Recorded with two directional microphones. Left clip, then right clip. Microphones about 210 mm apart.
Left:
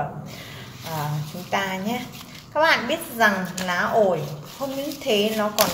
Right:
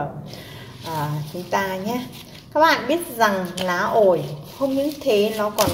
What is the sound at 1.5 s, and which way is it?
Speech, 25° right (ahead or behind).